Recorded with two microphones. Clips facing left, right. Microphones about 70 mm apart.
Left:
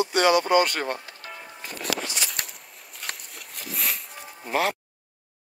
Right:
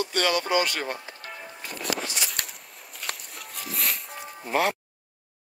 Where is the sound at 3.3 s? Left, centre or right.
Centre.